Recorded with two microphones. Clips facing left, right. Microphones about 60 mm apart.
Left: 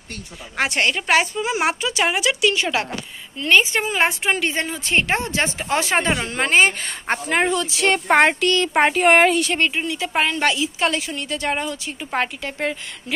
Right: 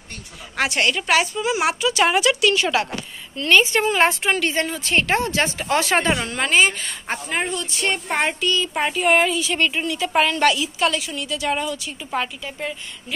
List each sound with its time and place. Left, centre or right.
0.6 s a woman's voice: left
2.0 s a woman's voice: centre
2.6 s a woman's voice: left
3.3 s a woman's voice: centre; by 6.9 s left
7.1 s speech: left
8.4 s speech: left
9.8 s a woman's voice: left
12.2 s speech: left